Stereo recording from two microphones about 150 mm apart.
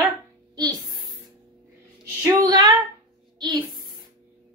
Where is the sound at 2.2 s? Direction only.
25° right (ahead or behind).